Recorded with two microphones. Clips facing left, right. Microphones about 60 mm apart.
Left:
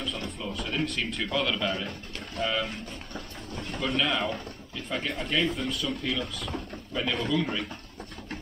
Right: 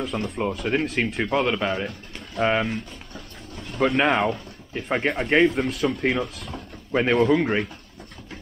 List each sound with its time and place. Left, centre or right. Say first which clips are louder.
0.0 s speech: right 8 dB; right
1.3 s speech: right 5 dB; right
2.3 s speech: right 7 dB; right
3.8 s speech: right 8 dB; right
5.5 s speech: right 7 dB; right